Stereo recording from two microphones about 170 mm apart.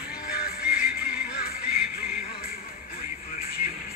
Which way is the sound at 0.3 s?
65° left (ahead or behind).